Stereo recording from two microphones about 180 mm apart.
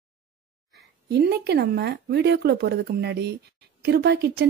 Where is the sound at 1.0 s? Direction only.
70° right (ahead or behind).